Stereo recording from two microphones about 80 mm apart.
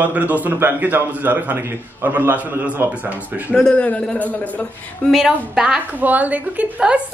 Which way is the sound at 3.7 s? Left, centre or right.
Centre.